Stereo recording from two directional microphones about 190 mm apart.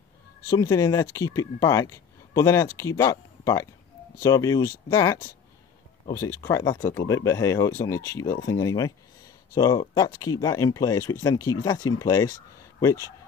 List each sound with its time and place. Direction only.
0.5 s speech: 20° left (ahead or behind)